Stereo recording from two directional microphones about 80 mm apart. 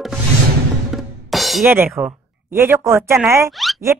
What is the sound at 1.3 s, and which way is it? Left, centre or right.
Music, centre.